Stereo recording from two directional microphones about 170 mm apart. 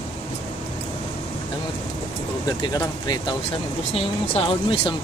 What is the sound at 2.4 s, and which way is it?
Speech, 20° left (ahead or behind).